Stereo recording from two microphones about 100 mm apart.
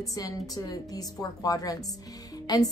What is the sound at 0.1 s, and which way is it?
A woman's voice, 35° left (ahead or behind).